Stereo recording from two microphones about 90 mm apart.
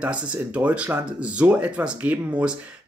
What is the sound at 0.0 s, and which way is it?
Speech, 15° right (ahead or behind).